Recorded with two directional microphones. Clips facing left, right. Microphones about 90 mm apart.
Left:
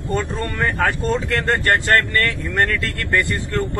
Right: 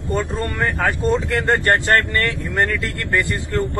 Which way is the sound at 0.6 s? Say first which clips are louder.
Even; centre (ahead or behind).